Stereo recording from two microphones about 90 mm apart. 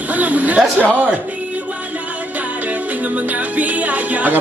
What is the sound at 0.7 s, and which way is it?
Music, 20° right (ahead or behind).